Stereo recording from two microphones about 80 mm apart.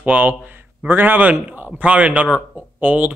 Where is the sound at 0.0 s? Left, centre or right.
Right.